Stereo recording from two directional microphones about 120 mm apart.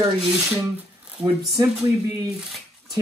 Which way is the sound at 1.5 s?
30° right (ahead or behind).